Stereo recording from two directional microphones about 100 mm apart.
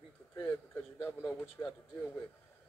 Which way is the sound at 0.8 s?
30° left (ahead or behind).